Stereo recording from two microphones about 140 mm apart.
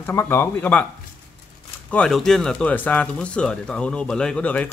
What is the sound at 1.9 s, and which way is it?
Speech, 5° left (ahead or behind).